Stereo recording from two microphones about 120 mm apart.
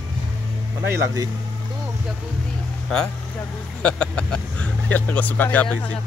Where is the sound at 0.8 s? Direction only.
25° right (ahead or behind).